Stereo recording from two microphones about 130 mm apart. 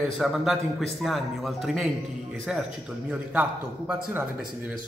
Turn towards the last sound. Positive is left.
turn(degrees=-15)  # may be behind; listen again after turning